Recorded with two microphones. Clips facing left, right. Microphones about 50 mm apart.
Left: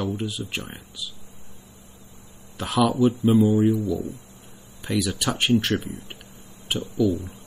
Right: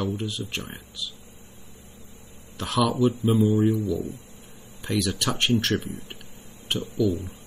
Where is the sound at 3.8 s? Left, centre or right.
Left.